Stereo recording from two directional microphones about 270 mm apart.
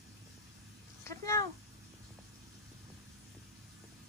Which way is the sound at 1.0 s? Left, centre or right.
Centre.